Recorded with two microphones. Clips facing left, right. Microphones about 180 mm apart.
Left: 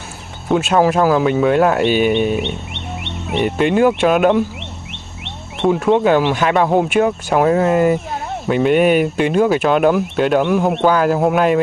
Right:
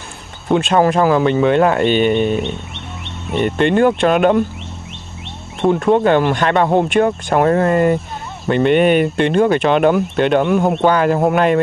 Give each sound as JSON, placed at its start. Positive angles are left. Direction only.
{"t": 0.5, "sound": "speech", "side_deg": 5}
{"t": 2.7, "sound": "wild animals", "side_deg": 70}
{"t": 3.4, "sound": "speech", "side_deg": 5}
{"t": 5.7, "sound": "speech", "side_deg": 0}